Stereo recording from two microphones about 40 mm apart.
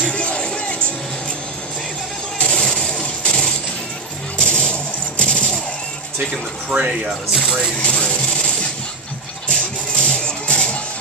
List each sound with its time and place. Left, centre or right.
0.1 s music: left
2.5 s toilet flush: centre
4.4 s music: left
6.7 s speech: right
7.1 s speech: centre
7.8 s a sound: left
9.5 s music: left